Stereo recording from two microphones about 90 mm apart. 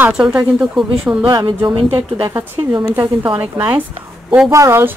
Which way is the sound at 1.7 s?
60° right (ahead or behind).